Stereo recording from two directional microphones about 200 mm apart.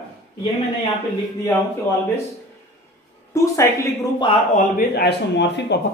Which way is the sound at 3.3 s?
15° left (ahead or behind).